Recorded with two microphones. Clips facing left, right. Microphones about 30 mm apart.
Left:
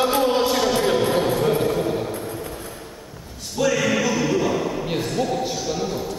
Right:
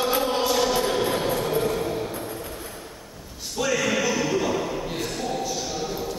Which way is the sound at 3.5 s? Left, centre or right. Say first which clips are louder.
Left 3 dB; centre.